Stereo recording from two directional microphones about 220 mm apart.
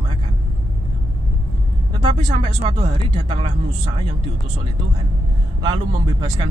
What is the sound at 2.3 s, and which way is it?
Speech, 25° right (ahead or behind).